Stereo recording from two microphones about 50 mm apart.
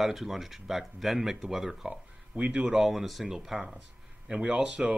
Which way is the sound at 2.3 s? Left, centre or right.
Right.